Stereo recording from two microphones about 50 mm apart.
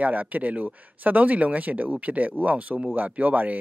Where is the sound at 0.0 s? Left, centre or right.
Right.